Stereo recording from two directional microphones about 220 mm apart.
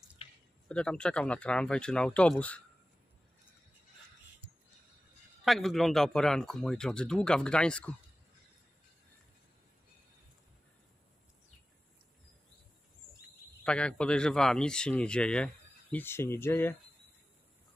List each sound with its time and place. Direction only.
0.2 s a sound: 25° left (ahead or behind)
0.7 s speech: 5° left (ahead or behind)
5.4 s speech: centre (ahead or behind)
13.7 s speech: 5° left (ahead or behind)